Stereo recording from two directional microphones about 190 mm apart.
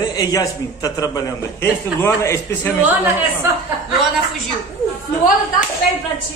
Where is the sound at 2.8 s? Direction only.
10° right (ahead or behind).